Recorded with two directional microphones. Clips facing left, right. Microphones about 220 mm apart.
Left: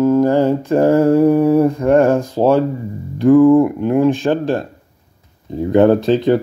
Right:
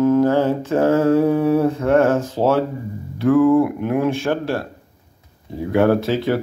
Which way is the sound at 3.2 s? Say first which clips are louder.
Left 5 dB; 15° left (ahead or behind).